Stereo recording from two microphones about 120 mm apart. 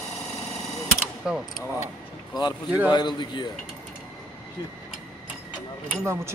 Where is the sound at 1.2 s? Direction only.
5° right (ahead or behind).